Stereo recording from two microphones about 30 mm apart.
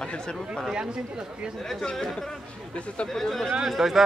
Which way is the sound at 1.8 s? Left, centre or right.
Left.